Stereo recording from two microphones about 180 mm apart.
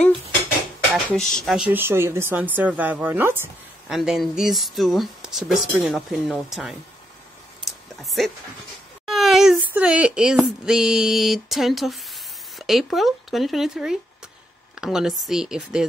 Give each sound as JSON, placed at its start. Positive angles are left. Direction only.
{"t": 0.9, "sound": "speech", "side_deg": 0}
{"t": 3.9, "sound": "speech", "side_deg": 0}
{"t": 7.6, "sound": "a sound", "side_deg": 0}
{"t": 9.7, "sound": "speech", "side_deg": -10}